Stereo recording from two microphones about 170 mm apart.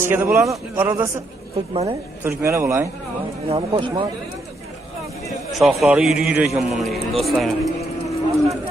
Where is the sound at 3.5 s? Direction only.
30° right (ahead or behind).